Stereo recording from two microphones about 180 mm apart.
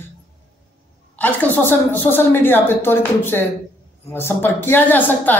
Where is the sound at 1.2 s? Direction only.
10° left (ahead or behind).